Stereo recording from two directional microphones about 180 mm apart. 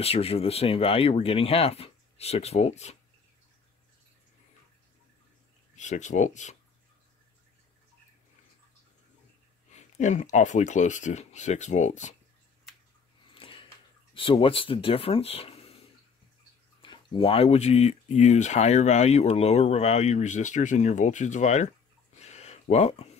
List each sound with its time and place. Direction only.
0.0 s speech: 35° left (ahead or behind)
5.8 s speech: 40° left (ahead or behind)
9.7 s speech: 40° left (ahead or behind)
13.3 s a sound: 30° left (ahead or behind)
14.1 s speech: 30° left (ahead or behind)
16.8 s speech: 25° left (ahead or behind)
22.2 s a sound: 35° left (ahead or behind)